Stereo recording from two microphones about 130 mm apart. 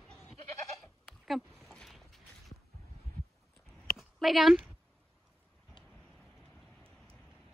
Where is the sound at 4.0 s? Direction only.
Centre (ahead or behind).